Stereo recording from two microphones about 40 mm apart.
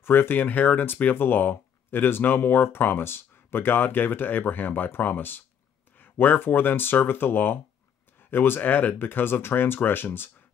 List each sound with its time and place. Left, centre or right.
0.1 s speech: left
1.1 s speech: left
8.9 s speech: left